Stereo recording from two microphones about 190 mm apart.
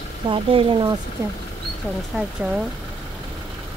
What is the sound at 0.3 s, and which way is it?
Speech, 30° right (ahead or behind).